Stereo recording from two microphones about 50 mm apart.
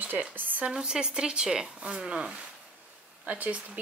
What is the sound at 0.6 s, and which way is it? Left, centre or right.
Speech, centre.